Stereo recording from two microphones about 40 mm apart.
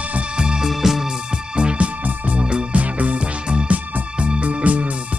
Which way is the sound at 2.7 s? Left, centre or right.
Right.